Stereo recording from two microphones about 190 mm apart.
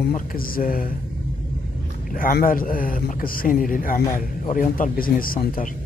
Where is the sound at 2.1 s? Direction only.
45° left (ahead or behind).